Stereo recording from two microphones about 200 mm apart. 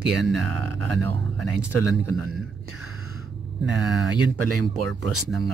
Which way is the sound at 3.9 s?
Centre (ahead or behind).